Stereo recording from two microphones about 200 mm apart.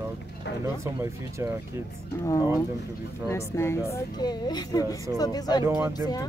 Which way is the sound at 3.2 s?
15° left (ahead or behind).